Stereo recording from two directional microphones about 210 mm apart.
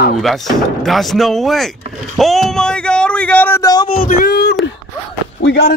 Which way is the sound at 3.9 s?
40° left (ahead or behind).